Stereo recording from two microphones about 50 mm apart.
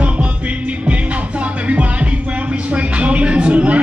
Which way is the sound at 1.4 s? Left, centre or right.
Right.